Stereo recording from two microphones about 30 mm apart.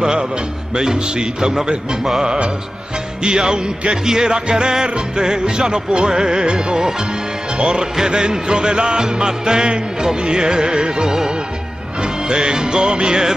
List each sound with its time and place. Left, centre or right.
0.0 s speech: right
0.7 s music: right
2.2 s music: right
3.2 s music: right
8.1 s music: right